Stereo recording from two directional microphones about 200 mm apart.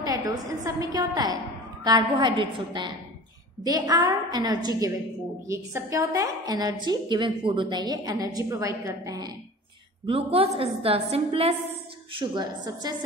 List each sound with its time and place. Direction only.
0.0 s a woman's voice: 15° right (ahead or behind)
10.0 s a woman's voice: 30° right (ahead or behind)